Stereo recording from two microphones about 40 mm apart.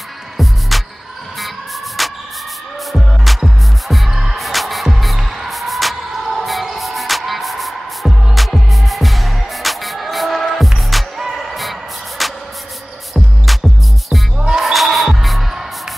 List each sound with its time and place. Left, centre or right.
0.4 s music: centre
2.0 s music: centre
12.2 s a sound: centre
13.1 s music: centre